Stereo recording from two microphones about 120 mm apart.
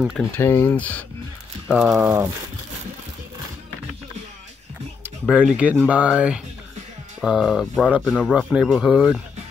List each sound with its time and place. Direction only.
0.4 s speech: 20° left (ahead or behind)
1.7 s speech: 5° right (ahead or behind)
2.0 s speech: 20° right (ahead or behind)
5.3 s speech: 10° right (ahead or behind)